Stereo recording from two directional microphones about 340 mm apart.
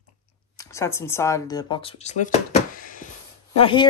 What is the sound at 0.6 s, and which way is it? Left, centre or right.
Speech, centre.